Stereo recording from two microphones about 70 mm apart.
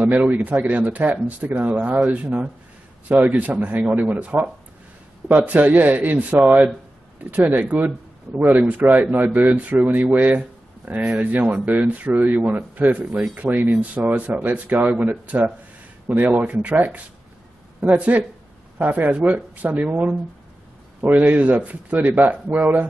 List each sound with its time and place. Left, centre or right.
0.2 s speech: right